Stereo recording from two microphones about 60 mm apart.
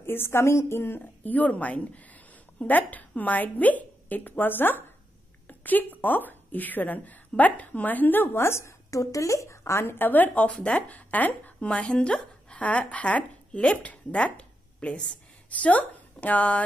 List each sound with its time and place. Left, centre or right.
0.0 s a woman's voice: left
8.9 s speech: left